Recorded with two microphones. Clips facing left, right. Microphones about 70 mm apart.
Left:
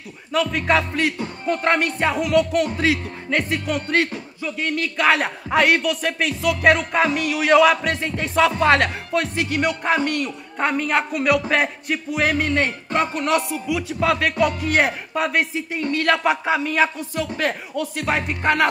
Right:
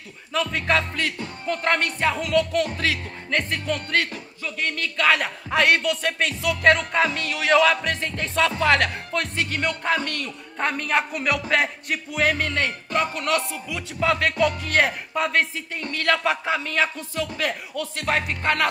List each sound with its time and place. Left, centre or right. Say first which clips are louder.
0.3 s music: left 3 dB; centre
0.9 s music: left 5 dB; centre
5.0 s music: left 2 dB; left
5.6 s music: left 2 dB; centre
8.5 s music: left 3 dB; left
9.1 s music: left 4 dB; centre
12.6 s music: left 2 dB; left
17.1 s music: left 3 dB; left
17.7 s music: even; centre